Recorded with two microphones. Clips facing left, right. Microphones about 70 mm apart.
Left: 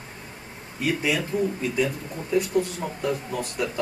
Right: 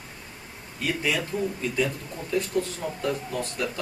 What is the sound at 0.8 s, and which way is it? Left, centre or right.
Speech, centre.